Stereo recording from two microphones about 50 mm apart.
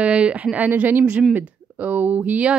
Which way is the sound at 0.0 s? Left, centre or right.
Right.